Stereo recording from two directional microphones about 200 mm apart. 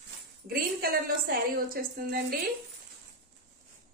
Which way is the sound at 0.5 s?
50° right (ahead or behind).